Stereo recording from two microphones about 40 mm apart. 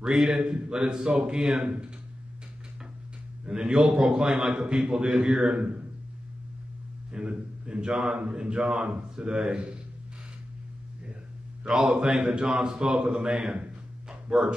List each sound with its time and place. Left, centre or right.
0.0 s a man's voice: centre
3.4 s a man's voice: centre
7.1 s a man's voice: right
11.6 s speech: centre